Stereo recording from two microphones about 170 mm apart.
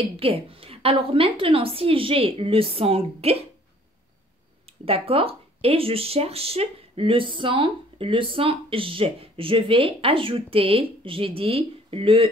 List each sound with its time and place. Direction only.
0.2 s speech: 35° right (ahead or behind)
4.8 s speech: 35° right (ahead or behind)